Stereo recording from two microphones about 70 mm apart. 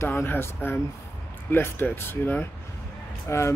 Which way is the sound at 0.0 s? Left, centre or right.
Left.